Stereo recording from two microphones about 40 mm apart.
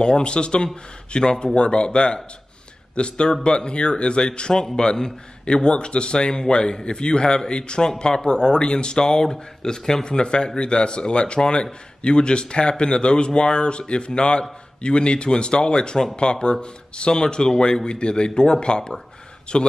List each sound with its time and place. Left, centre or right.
0.0 s speech: left